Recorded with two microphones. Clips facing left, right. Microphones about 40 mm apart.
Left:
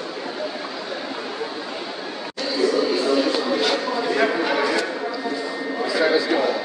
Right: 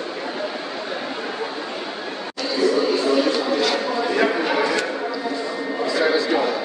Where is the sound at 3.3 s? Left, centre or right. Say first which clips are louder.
Right 1 dB; centre.